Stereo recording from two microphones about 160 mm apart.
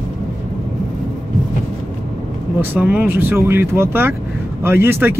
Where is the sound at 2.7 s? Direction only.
10° right (ahead or behind).